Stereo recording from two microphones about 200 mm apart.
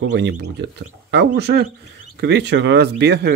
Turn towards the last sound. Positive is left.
turn(degrees=-55)  # may be behind; listen again after turning